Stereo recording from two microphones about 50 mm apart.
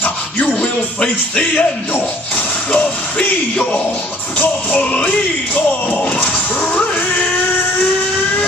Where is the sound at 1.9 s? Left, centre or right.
Left.